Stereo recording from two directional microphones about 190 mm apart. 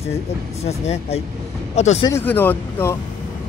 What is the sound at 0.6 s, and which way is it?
Speech, 35° left (ahead or behind).